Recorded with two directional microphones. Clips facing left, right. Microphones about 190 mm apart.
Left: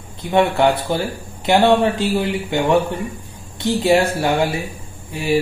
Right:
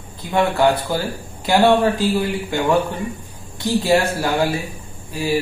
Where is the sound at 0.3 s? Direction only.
20° left (ahead or behind).